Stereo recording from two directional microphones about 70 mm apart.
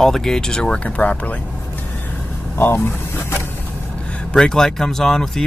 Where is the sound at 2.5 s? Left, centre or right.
Left.